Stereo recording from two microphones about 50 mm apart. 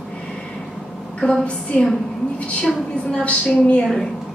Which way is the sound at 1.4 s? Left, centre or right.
Left.